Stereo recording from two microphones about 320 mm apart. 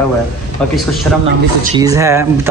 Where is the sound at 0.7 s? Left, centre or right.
Centre.